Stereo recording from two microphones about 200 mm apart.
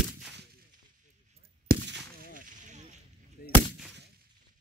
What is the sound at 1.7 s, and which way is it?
Gunshot, 45° right (ahead or behind).